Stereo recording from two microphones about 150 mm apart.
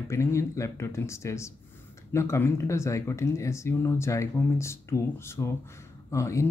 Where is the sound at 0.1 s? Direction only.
20° left (ahead or behind).